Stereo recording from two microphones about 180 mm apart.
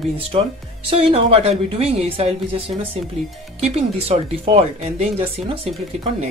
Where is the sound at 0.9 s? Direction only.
30° right (ahead or behind).